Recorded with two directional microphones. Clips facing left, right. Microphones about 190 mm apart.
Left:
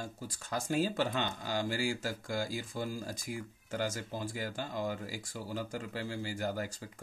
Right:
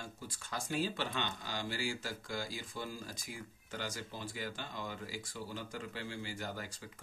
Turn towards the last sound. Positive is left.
turn(degrees=45)  # may be behind; listen again after turning